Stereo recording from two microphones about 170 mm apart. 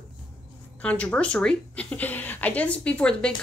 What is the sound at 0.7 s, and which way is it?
Speech, 10° left (ahead or behind).